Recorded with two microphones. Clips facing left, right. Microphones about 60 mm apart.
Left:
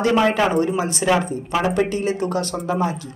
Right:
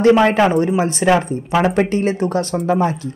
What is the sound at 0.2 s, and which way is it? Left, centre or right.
A woman's voice, right.